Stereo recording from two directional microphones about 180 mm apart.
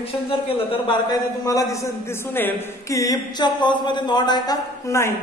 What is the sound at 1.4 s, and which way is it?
A woman's voice, 20° left (ahead or behind).